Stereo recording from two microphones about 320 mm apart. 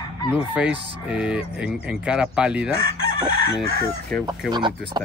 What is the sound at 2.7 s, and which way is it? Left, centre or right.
Chicken, centre.